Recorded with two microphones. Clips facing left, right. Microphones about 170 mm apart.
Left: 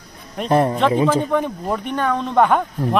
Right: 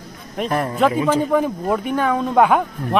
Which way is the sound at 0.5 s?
30° left (ahead or behind).